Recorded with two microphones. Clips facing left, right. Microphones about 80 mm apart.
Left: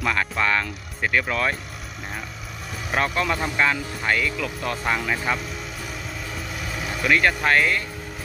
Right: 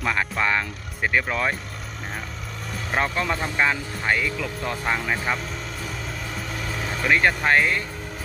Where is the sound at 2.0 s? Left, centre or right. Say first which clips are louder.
Even; centre.